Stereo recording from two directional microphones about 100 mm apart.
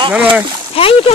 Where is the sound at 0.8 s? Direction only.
70° left (ahead or behind).